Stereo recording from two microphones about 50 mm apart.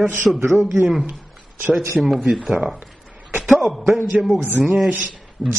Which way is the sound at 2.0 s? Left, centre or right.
Centre.